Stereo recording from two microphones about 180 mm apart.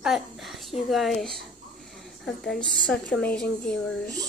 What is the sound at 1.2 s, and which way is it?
A woman's voice, centre (ahead or behind).